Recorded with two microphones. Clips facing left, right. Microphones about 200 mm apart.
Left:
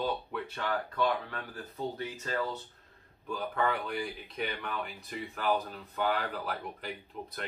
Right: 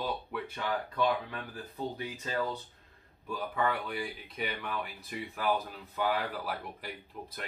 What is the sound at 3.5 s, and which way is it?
Speech, 5° right (ahead or behind).